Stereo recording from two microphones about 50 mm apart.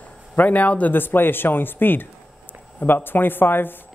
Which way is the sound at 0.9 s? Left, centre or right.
Left.